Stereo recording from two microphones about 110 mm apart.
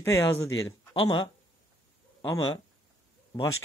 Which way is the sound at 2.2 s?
35° left (ahead or behind).